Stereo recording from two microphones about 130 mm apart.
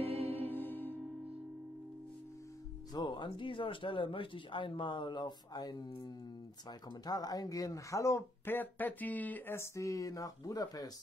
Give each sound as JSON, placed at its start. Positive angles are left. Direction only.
{"t": 0.0, "sound": "music", "side_deg": -50}
{"t": 0.4, "sound": "music", "side_deg": 15}
{"t": 2.9, "sound": "speech", "side_deg": 35}